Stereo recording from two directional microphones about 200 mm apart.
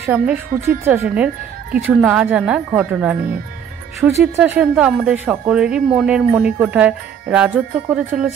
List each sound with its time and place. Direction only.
0.0 s speech: 10° right (ahead or behind)